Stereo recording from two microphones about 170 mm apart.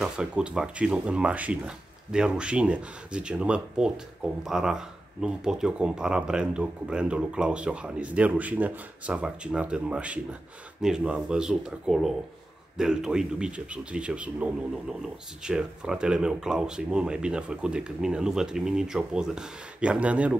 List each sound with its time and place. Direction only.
0.0 s speech: 5° right (ahead or behind)